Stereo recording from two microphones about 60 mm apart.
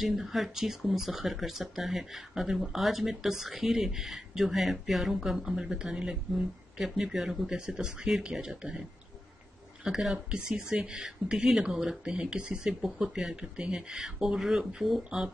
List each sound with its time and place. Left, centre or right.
0.0 s speech: centre
9.8 s speech: centre
10.1 s speech: centre